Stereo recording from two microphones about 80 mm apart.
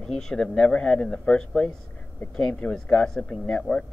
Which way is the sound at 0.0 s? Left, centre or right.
Centre.